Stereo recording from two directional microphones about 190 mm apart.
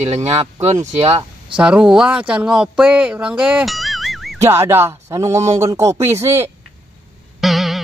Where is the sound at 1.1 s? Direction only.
20° right (ahead or behind).